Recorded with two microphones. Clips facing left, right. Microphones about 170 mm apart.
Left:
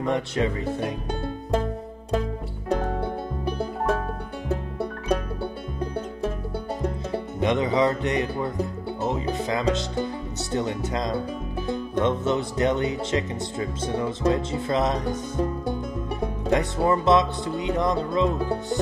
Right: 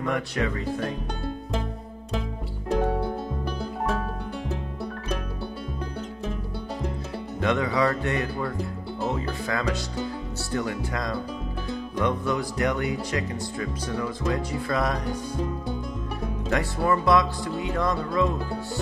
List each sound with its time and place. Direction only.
0.0 s speech: 25° left (ahead or behind)
7.3 s speech: 20° left (ahead or behind)
16.4 s speech: 20° left (ahead or behind)